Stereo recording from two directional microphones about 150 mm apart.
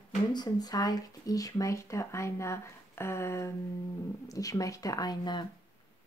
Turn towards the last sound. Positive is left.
turn(degrees=30)  # may be behind; listen again after turning